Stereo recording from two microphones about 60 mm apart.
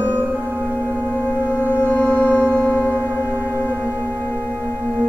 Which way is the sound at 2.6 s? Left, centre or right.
Left.